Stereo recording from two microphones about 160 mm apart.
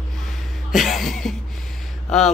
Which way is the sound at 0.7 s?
Centre (ahead or behind).